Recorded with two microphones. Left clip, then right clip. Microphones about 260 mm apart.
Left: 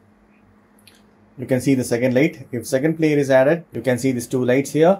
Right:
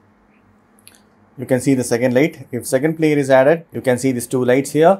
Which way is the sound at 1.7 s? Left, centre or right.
Right.